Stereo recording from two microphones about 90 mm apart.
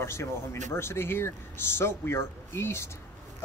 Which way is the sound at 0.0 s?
30° left (ahead or behind).